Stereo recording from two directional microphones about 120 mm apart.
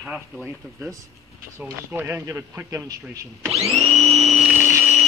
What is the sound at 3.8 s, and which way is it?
Vacuum cleaner, 60° right (ahead or behind).